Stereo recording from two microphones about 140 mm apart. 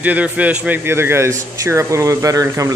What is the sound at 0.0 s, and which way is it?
Speech, 10° right (ahead or behind).